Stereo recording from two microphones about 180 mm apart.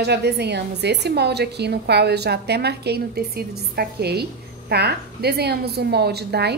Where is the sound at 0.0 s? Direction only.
65° right (ahead or behind).